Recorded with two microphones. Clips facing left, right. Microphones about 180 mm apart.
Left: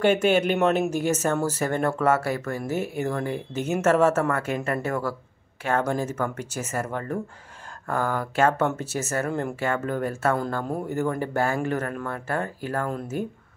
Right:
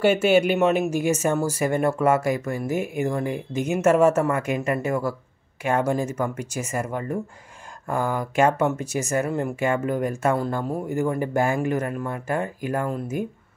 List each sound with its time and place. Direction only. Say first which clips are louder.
0.0 s speech: right 2 dB; 10° right (ahead or behind)